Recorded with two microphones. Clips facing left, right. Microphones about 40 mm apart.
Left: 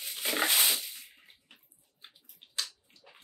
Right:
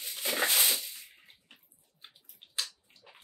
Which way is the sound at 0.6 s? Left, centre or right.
Centre.